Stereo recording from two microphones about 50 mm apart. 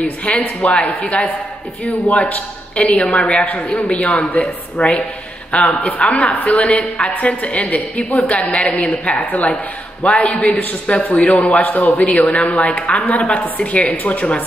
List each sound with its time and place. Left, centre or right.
0.0 s a woman's voice: left
2.0 s a man's voice: left
3.1 s a woman's voice: centre
3.9 s a woman's voice: left
10.0 s a woman's voice: left
10.5 s a man's voice: left
10.9 s a woman's voice: left